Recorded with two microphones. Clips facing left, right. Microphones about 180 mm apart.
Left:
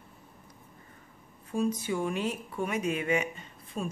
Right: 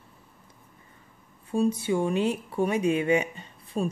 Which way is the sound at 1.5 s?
30° right (ahead or behind).